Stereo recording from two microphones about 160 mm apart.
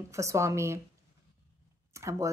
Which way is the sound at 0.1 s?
20° right (ahead or behind).